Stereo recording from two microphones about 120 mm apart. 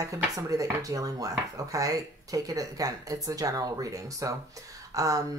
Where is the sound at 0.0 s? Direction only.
30° right (ahead or behind).